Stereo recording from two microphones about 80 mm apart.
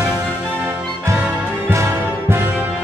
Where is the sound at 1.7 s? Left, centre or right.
Right.